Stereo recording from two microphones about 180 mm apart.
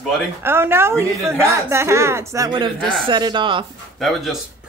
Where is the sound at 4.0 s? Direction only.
Centre (ahead or behind).